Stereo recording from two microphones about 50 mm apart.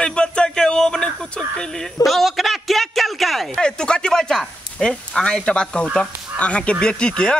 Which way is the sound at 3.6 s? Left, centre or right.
Centre.